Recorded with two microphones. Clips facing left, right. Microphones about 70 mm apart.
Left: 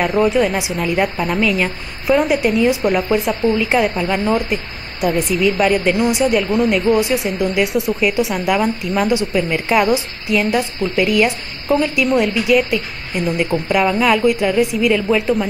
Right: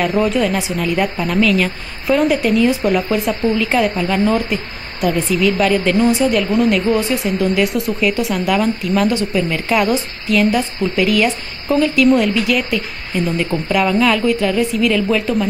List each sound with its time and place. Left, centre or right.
0.0 s a woman's voice: centre
6.5 s a woman's voice: centre